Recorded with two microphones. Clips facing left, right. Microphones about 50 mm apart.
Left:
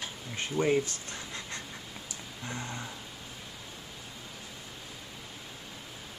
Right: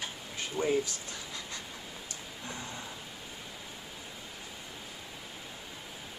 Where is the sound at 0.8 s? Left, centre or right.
Left.